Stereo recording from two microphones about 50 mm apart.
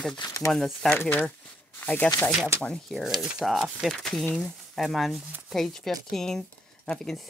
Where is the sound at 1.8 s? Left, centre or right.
Left.